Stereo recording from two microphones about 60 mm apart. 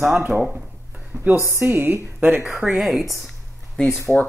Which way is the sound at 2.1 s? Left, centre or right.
Right.